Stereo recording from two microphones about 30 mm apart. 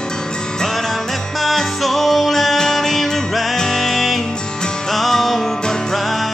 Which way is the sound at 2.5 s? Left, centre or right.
Centre.